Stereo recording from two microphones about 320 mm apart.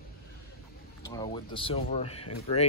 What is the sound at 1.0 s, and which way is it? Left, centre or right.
Speech, centre.